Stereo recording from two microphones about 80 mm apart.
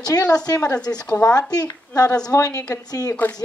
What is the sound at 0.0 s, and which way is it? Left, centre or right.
A woman's voice, left.